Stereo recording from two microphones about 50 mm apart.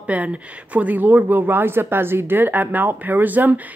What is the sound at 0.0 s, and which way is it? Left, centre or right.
Speech, right.